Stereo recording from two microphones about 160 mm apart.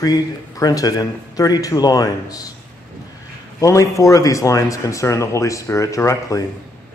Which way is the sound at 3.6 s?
20° left (ahead or behind).